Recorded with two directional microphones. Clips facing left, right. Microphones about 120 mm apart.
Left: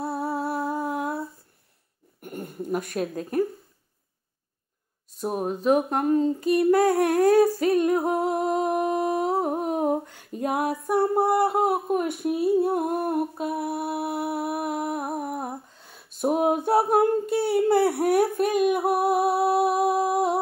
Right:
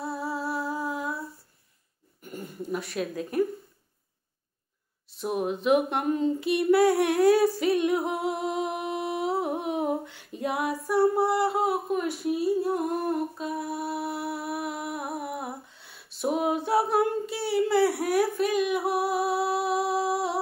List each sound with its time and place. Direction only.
0.0 s humming: 55° left (ahead or behind)
2.2 s a woman's voice: 55° left (ahead or behind)
5.1 s a sound: 40° left (ahead or behind)